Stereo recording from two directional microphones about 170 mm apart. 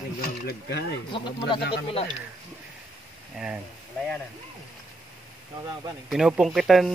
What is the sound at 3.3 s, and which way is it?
Speech, 5° right (ahead or behind).